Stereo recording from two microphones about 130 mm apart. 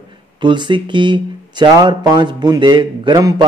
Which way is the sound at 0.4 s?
40° right (ahead or behind).